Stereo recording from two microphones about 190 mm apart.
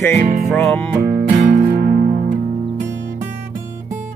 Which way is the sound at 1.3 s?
50° right (ahead or behind).